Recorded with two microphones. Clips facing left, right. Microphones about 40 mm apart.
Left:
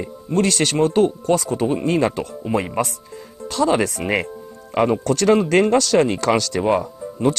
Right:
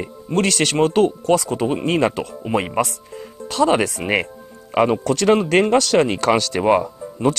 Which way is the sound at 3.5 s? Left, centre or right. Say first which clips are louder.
Right 1 dB; right.